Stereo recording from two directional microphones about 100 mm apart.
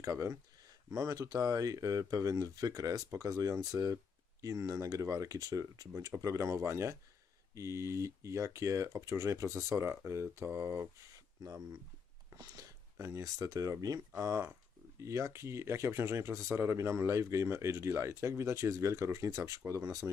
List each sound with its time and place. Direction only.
0.0 s speech: 30° right (ahead or behind)
12.4 s speech: 35° right (ahead or behind)